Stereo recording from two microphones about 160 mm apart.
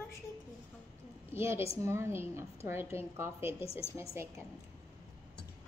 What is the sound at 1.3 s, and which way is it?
A woman's voice, 15° right (ahead or behind).